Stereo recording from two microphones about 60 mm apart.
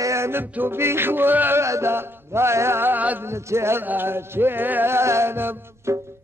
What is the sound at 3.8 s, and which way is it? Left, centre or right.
Music, right.